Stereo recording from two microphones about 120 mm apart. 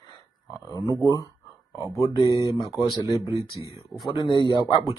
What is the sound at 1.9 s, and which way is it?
Speech, 25° left (ahead or behind).